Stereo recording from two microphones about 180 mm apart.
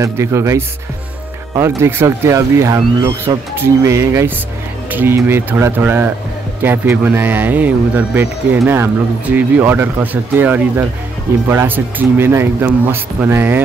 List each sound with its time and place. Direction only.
0.0 s a man's voice: 15° right (ahead or behind)